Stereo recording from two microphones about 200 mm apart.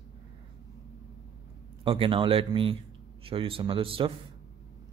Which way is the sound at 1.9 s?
25° right (ahead or behind).